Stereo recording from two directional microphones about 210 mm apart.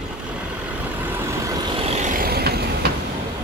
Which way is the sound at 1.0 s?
10° right (ahead or behind).